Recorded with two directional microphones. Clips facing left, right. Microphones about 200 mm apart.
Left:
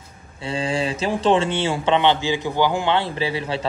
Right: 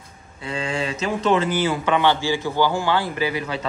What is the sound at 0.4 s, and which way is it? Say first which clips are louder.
A man's voice: left 3 dB; 30° left (ahead or behind).